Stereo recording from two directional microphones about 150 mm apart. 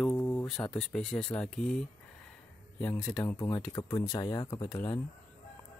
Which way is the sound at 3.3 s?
25° left (ahead or behind).